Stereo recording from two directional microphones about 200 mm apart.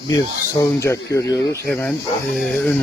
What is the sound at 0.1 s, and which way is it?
Speech, 15° left (ahead or behind).